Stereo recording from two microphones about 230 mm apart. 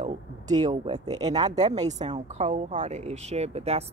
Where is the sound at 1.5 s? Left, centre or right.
Right.